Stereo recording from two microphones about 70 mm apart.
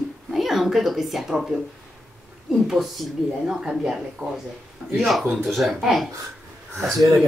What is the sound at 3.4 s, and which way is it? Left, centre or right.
A woman's voice, centre.